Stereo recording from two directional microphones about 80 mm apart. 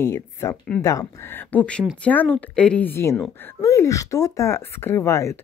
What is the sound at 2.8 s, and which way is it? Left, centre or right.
Speech, left.